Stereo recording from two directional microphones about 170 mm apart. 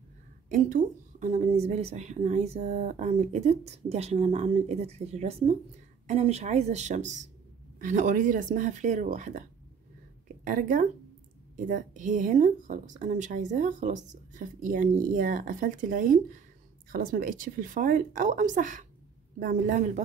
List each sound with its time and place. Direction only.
0.5 s a woman's voice: 55° right (ahead or behind)